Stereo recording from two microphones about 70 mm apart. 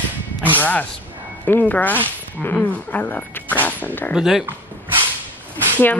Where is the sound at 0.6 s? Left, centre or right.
Left.